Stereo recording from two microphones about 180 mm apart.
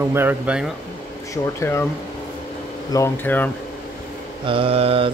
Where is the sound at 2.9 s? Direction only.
15° left (ahead or behind).